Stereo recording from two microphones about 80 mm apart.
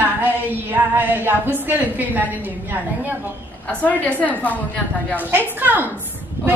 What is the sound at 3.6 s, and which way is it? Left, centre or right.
A woman's voice, centre.